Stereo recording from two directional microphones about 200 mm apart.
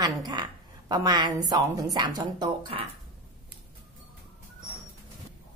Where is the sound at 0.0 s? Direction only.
20° right (ahead or behind).